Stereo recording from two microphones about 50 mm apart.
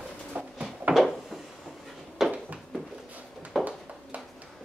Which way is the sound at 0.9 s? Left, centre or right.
Right.